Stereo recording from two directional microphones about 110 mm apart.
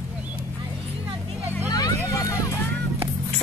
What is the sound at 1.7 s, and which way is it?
Vehicle, 35° left (ahead or behind).